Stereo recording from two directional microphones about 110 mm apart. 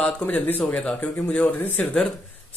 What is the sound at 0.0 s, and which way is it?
Speech, 15° left (ahead or behind).